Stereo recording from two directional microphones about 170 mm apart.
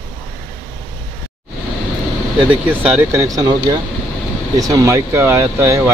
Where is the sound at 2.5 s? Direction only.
10° right (ahead or behind).